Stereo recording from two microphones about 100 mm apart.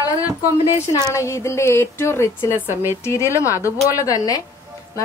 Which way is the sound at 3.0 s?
30° left (ahead or behind).